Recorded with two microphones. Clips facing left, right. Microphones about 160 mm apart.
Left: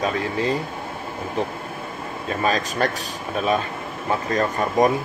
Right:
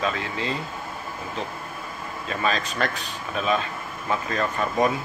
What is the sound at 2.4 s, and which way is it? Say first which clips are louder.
Speech: left 4 dB; 40° left (ahead or behind).